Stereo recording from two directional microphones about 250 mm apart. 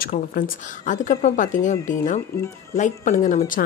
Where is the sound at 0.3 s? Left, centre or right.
Left.